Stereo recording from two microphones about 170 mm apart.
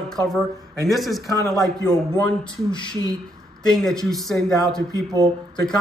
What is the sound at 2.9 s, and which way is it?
Speech, 20° right (ahead or behind).